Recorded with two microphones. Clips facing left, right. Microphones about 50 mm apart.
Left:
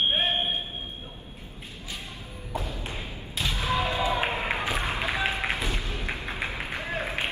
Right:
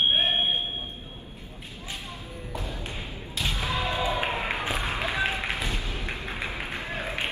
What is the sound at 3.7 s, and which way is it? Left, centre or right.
Basketball bounce, left.